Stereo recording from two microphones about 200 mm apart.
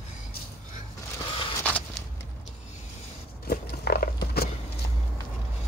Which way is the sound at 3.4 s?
50° left (ahead or behind).